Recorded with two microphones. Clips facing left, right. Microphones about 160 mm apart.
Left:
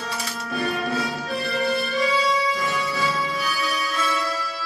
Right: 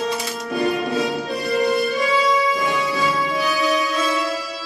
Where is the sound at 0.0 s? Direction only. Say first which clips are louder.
Right 7 dB; 20° right (ahead or behind).